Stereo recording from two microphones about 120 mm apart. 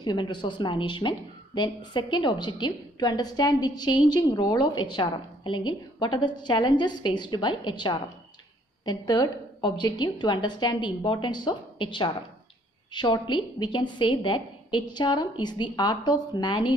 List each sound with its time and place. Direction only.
0.0 s a woman's voice: 40° left (ahead or behind)